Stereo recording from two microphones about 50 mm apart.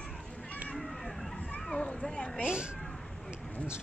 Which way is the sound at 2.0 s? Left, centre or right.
Centre.